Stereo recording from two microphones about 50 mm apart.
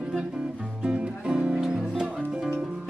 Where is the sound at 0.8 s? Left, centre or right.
Centre.